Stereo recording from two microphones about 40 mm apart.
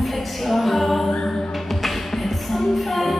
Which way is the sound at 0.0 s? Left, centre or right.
Centre.